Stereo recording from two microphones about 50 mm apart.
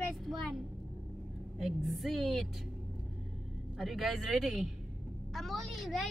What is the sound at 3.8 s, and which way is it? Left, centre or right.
Speech, centre.